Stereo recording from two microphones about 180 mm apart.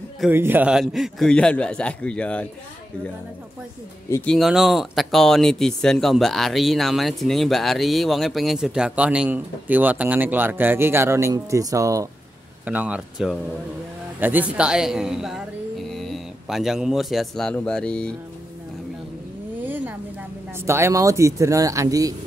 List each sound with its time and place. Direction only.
0.3 s speech: 10° right (ahead or behind); by 2.4 s 5° left (ahead or behind)
4.1 s speech: 5° left (ahead or behind)
19.6 s a sound: 10° right (ahead or behind)
20.5 s speech: 15° right (ahead or behind)